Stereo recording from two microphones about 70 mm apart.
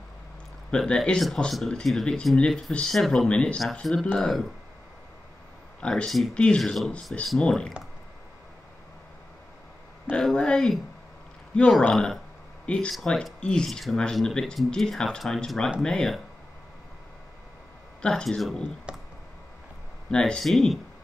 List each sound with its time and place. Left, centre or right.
0.7 s speech: centre
3.8 s speech: centre
5.8 s speech: centre
7.3 s speech: centre
10.1 s speech: centre
11.9 s speech: centre
12.7 s speech: centre
18.0 s speech: centre
18.9 s clicking: centre
20.1 s speech: centre